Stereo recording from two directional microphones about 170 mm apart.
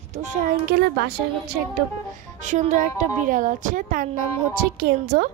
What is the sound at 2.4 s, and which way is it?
A woman's voice, 45° right (ahead or behind).